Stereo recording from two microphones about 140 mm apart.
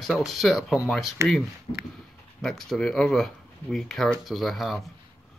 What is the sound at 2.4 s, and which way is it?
Speech, centre (ahead or behind).